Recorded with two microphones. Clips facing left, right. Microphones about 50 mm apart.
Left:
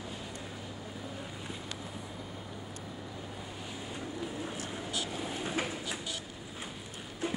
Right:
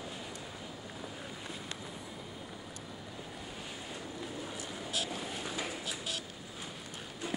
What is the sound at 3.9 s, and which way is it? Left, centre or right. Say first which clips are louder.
Vehicle: left 5 dB; centre.